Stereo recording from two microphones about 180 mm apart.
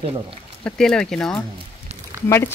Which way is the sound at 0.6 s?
5° left (ahead or behind).